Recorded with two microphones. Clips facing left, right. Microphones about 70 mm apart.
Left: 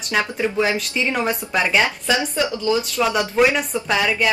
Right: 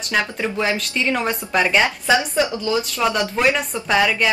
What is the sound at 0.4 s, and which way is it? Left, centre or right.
A woman's voice, centre.